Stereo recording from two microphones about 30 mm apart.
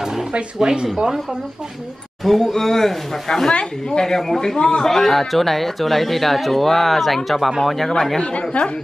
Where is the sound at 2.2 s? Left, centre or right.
Centre.